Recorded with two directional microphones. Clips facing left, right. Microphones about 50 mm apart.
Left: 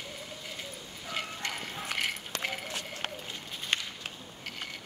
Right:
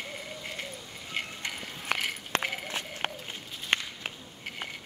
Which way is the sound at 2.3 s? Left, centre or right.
Right.